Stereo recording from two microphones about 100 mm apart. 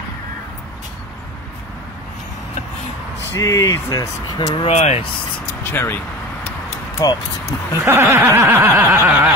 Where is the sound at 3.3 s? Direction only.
30° left (ahead or behind).